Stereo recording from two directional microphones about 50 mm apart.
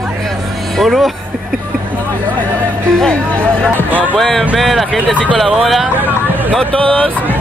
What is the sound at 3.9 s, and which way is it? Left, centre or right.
Music, right.